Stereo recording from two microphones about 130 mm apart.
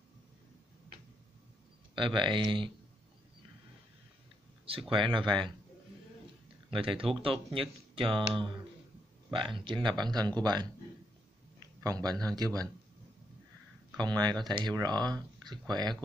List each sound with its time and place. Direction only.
2.0 s speech: 40° right (ahead or behind)
4.9 s speech: 40° right (ahead or behind)
6.7 s speech: 40° right (ahead or behind)
11.8 s a man's voice: 30° right (ahead or behind)
13.9 s speech: 35° right (ahead or behind)